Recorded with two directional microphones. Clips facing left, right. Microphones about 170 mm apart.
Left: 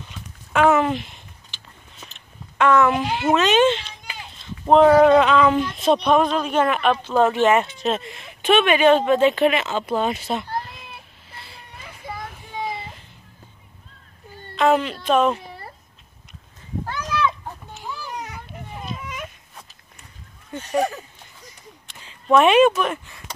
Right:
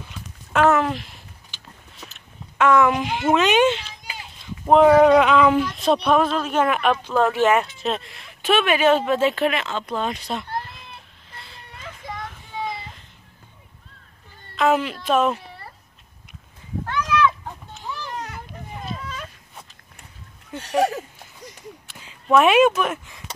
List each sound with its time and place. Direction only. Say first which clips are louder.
0.5 s a sound: left 1 dB; centre (ahead or behind)
2.5 s speech: even; 10° right (ahead or behind)
11.3 s children playing: even; 10° left (ahead or behind)
14.6 s speech: left 1 dB; 5° right (ahead or behind)
17.8 s children playing: right 1 dB; 10° left (ahead or behind)
18.1 s children playing: right 1 dB; centre (ahead or behind)
18.9 s a sound: left 1 dB; 15° left (ahead or behind)
21.8 s speech: left 3 dB; 5° right (ahead or behind)